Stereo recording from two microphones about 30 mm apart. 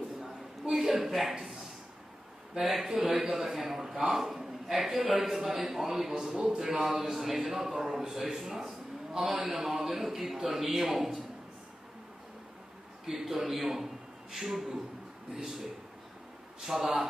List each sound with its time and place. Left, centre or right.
0.2 s a sound: centre
2.6 s a man's voice: centre
13.0 s a man's voice: centre
16.6 s a man's voice: centre